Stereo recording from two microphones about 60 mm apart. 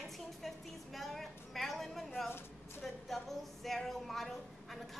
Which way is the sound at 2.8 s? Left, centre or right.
Centre.